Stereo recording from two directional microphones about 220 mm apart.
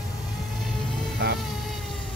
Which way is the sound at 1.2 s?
45° right (ahead or behind).